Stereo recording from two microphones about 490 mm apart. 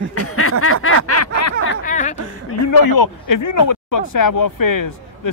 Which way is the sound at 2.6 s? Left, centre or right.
Left.